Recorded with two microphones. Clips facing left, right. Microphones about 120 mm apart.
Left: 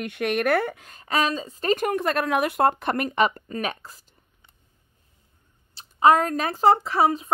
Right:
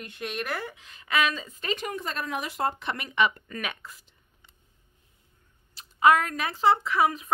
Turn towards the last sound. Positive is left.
turn(degrees=30)  # may be behind; listen again after turning